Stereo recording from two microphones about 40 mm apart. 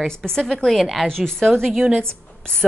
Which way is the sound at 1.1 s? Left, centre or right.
Centre.